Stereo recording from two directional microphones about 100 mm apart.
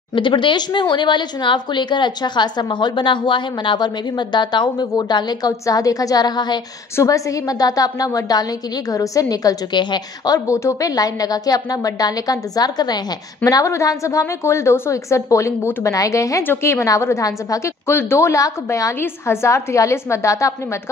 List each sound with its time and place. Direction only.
0.1 s speech: 55° left (ahead or behind)
7.0 s a woman's voice: 35° left (ahead or behind)